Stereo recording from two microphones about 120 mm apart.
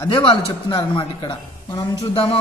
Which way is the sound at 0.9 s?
45° left (ahead or behind).